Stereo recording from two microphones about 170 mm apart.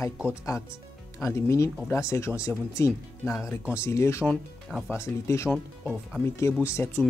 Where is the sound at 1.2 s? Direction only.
15° left (ahead or behind).